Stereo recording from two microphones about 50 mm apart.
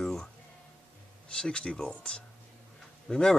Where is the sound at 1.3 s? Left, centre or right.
Centre.